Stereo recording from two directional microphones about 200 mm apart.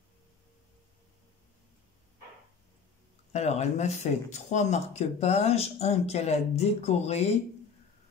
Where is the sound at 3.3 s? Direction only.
35° left (ahead or behind).